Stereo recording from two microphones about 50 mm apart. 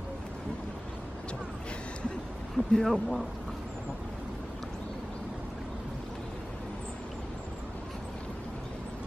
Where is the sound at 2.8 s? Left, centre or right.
Centre.